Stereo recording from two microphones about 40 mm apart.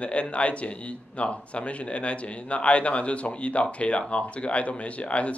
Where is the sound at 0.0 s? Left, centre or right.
Left.